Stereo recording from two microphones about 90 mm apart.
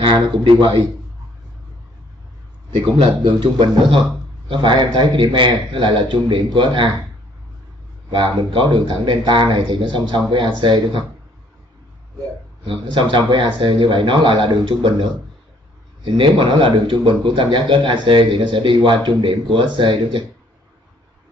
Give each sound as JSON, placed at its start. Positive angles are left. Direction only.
{"t": 0.0, "sound": "speech", "side_deg": -70}
{"t": 3.2, "sound": "speech", "side_deg": -55}
{"t": 8.1, "sound": "speech", "side_deg": -60}
{"t": 12.6, "sound": "speech", "side_deg": -65}